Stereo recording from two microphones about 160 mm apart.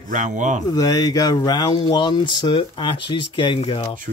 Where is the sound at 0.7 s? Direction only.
25° left (ahead or behind).